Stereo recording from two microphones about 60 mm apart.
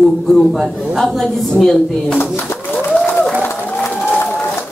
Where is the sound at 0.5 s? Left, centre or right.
Centre.